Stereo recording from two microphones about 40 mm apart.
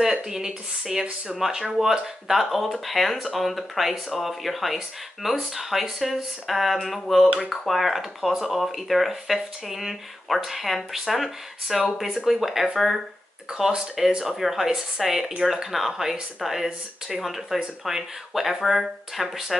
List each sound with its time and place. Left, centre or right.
0.0 s speech: centre
13.5 s speech: centre